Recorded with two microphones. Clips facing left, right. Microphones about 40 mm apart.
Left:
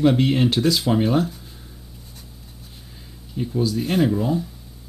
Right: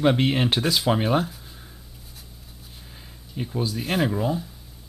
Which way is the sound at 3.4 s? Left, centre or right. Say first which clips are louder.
Left 5 dB; centre.